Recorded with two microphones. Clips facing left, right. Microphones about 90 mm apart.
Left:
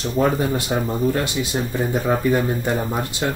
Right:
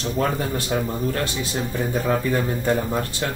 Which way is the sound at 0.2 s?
20° left (ahead or behind).